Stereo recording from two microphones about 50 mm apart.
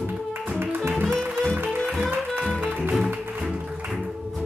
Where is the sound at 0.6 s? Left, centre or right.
Right.